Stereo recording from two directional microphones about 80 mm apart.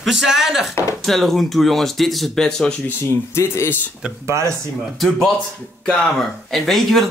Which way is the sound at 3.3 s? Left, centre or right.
Left.